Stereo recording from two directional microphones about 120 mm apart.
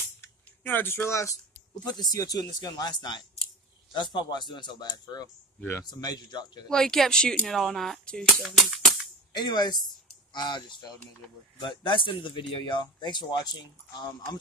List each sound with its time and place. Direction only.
0.2 s a sound: 15° left (ahead or behind)
2.1 s speech: 35° left (ahead or behind)
5.6 s speech: 15° left (ahead or behind)
5.9 s speech: 35° left (ahead or behind)
6.7 s speech: 5° left (ahead or behind)
8.4 s music: centre (ahead or behind)
9.3 s speech: 35° left (ahead or behind)